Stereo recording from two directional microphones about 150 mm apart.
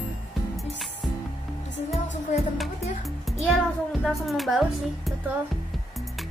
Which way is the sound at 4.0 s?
Centre (ahead or behind).